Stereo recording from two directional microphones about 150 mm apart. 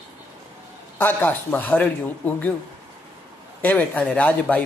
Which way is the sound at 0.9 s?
15° left (ahead or behind).